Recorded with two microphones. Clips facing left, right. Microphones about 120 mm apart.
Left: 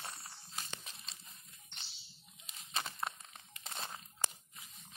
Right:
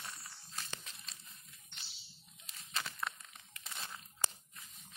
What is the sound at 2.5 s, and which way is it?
Crumpling, 20° left (ahead or behind).